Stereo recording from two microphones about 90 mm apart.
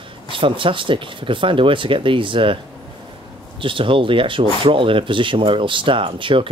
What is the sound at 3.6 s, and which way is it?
Speech, 70° right (ahead or behind).